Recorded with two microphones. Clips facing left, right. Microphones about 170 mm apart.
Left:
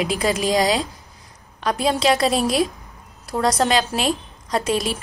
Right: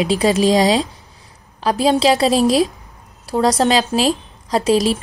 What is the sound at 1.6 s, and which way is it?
Speech, 30° right (ahead or behind).